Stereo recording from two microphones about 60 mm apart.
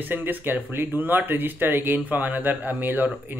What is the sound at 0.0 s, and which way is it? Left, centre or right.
Speech, right.